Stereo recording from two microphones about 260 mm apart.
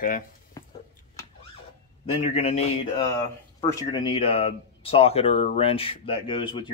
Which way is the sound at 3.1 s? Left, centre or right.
Centre.